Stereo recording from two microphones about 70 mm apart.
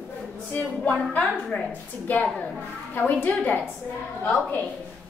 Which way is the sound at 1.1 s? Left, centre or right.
Left.